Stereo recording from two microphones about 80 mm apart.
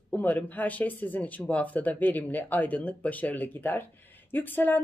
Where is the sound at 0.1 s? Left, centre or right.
Left.